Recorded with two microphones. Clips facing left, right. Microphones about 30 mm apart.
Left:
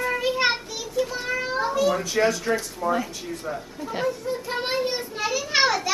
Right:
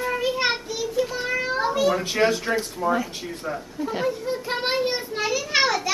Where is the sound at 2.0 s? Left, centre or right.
Right.